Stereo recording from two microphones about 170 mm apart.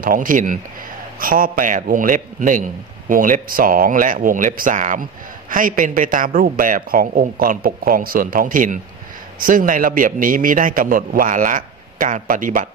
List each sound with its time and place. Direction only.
0.0 s a man's voice: 55° right (ahead or behind)